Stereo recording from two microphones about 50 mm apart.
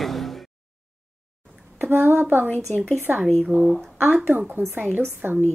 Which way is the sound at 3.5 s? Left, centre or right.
Left.